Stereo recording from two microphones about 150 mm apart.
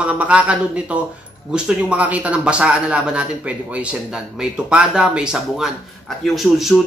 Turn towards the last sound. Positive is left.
turn(degrees=0)  # may be behind; listen again after turning